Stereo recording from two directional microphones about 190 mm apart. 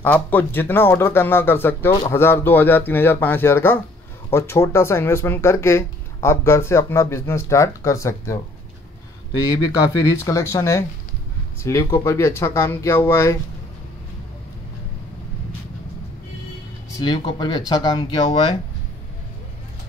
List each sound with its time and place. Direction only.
0.0 s speech: 10° left (ahead or behind)
10.0 s speech: 15° left (ahead or behind)
17.0 s speech: 20° left (ahead or behind)